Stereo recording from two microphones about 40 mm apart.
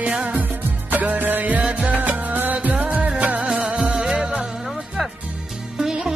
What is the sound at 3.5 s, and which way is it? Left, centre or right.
Music, centre.